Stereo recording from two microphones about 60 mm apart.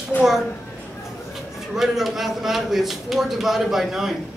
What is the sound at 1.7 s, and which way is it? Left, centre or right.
A man's voice, centre.